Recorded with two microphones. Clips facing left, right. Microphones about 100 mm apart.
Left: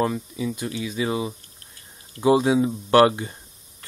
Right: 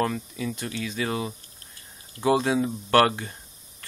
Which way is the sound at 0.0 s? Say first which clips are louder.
Left 3 dB; 15° left (ahead or behind).